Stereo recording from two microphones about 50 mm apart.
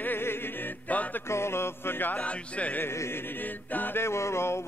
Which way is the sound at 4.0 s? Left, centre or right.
Left.